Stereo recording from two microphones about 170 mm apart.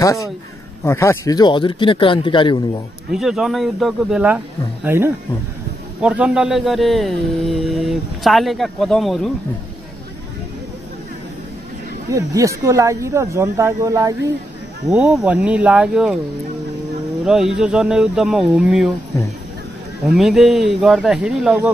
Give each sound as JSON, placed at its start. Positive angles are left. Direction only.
{"t": 0.0, "sound": "speech", "side_deg": 20}
{"t": 3.1, "sound": "speech", "side_deg": 0}
{"t": 12.1, "sound": "speech", "side_deg": -20}
{"t": 14.9, "sound": "speech", "side_deg": -5}
{"t": 17.2, "sound": "speech", "side_deg": -5}
{"t": 20.1, "sound": "speech", "side_deg": 0}